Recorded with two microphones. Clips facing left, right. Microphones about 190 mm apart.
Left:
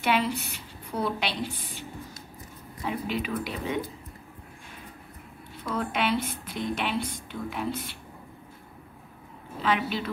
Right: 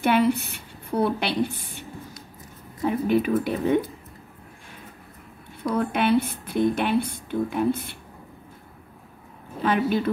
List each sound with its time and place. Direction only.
0.0 s a woman's voice: 55° right (ahead or behind)
5.6 s speech: 55° right (ahead or behind)
9.6 s speech: 50° right (ahead or behind)